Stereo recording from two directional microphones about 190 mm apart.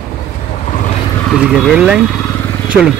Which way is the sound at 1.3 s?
Centre (ahead or behind).